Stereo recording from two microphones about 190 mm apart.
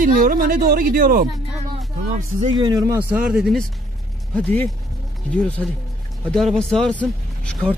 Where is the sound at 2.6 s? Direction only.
20° right (ahead or behind).